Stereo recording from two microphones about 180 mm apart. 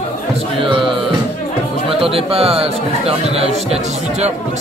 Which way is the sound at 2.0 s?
30° right (ahead or behind).